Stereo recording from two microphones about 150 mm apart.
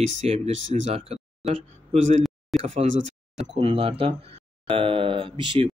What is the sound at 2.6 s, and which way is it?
Speech, 45° right (ahead or behind).